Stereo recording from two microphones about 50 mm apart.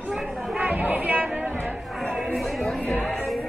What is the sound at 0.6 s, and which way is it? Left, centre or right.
Chatter, right.